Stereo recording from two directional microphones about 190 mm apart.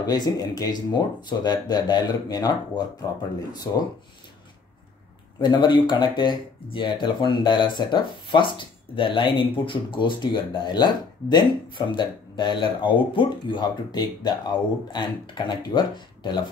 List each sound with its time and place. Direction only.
0.0 s speech: 20° left (ahead or behind)
5.4 s speech: 25° left (ahead or behind)